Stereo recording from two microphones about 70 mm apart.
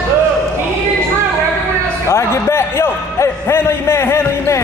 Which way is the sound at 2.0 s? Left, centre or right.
Left.